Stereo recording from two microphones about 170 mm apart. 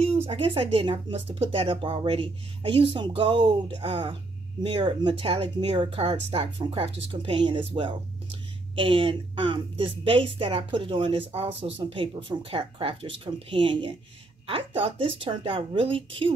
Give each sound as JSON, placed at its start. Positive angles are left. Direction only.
{"t": 0.0, "sound": "speech", "side_deg": -35}